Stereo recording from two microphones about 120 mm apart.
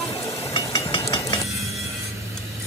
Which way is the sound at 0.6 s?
50° left (ahead or behind).